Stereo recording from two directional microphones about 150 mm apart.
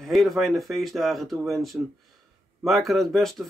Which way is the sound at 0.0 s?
Centre (ahead or behind).